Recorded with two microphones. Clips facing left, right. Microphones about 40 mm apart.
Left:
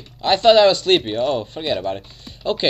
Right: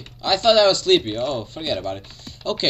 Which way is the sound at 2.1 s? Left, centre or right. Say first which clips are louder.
Left 3 dB; left.